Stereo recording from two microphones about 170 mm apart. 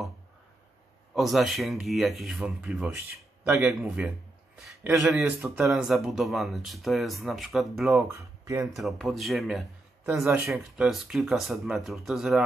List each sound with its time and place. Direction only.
1.1 s speech: centre (ahead or behind)
8.1 s speech: 15° right (ahead or behind)
8.7 s speech: centre (ahead or behind)